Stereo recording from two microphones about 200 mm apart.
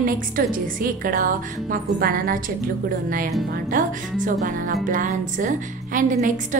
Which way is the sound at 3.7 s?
40° right (ahead or behind).